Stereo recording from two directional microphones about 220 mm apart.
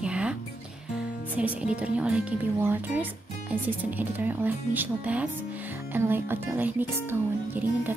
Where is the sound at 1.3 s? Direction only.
5° right (ahead or behind).